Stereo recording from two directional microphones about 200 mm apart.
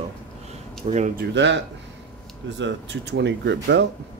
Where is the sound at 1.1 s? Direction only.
55° right (ahead or behind).